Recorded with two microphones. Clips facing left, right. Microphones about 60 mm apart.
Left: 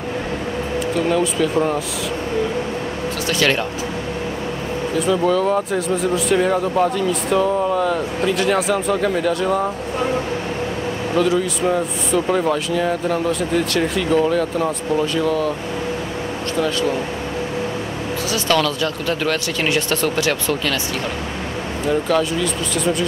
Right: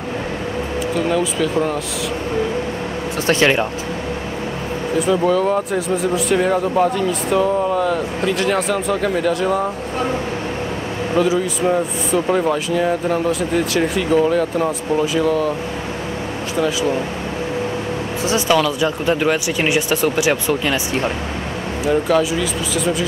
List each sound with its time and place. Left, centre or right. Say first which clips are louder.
0.9 s speech: even; centre
4.9 s speech: right 1 dB; centre
11.1 s speech: right 1 dB; centre
16.5 s speech: right 1 dB; centre
18.5 s speech: right 1 dB; centre
21.8 s speech: right 2 dB; centre